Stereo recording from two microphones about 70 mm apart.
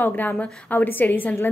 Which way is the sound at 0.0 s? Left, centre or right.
Left.